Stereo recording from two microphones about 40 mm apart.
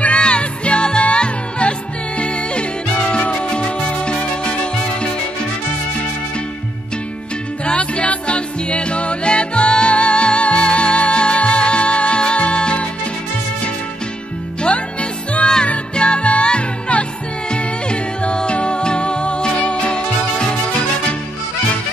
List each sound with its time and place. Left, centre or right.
0.2 s music: left
7.6 s music: left
14.6 s music: left